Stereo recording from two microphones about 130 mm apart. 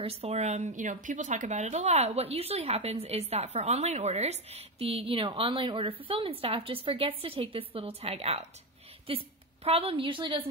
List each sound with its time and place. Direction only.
0.0 s speech: 50° right (ahead or behind)